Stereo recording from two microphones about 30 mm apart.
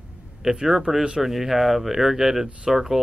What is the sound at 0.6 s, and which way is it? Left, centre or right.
Speech, centre.